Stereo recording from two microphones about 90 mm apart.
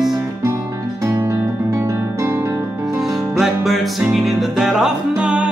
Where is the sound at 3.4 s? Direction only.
5° right (ahead or behind).